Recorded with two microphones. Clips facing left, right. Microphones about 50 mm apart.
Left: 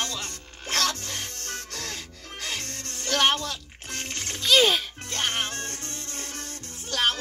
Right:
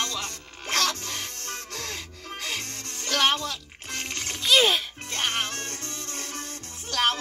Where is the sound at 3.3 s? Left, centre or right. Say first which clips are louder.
Right 1 dB; left.